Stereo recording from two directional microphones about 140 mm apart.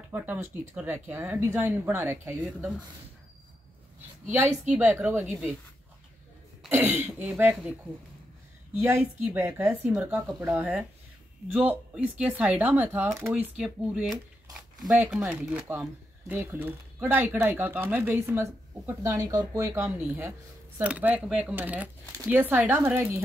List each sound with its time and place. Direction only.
0.1 s speech: 15° right (ahead or behind)
4.3 s speech: 15° right (ahead or behind)
6.7 s speech: 15° right (ahead or behind)
8.8 s speech: 15° right (ahead or behind)